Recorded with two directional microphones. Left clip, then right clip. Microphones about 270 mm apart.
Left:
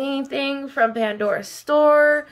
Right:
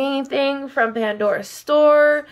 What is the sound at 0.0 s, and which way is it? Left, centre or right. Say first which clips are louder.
A woman's voice: right 4 dB; centre.